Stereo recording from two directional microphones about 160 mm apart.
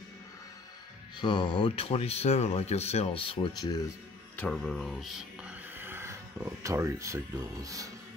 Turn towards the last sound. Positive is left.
turn(degrees=-20)  # may be behind; listen again after turning